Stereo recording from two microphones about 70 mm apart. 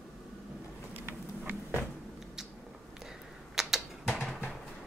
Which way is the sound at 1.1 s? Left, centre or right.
Right.